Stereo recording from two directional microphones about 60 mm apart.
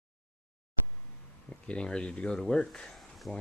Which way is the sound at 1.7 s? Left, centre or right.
Centre.